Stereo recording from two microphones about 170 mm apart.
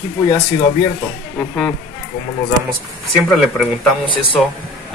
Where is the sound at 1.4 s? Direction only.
5° left (ahead or behind).